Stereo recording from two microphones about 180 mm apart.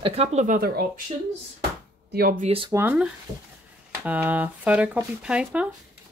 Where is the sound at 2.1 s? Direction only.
55° right (ahead or behind).